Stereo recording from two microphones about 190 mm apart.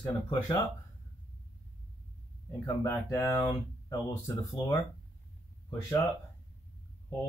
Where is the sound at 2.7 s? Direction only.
15° left (ahead or behind).